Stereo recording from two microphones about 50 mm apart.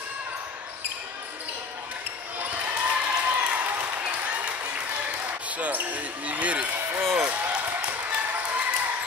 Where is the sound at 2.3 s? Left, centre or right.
Right.